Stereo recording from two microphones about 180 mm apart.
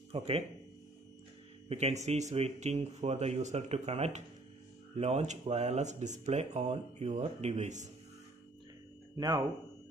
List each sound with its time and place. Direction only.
0.1 s speech: 35° right (ahead or behind)
1.7 s speech: 35° right (ahead or behind)
9.1 s speech: 20° right (ahead or behind)